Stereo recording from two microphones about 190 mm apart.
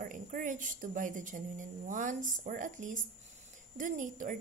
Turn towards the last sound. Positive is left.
turn(degrees=-45)  # may be behind; listen again after turning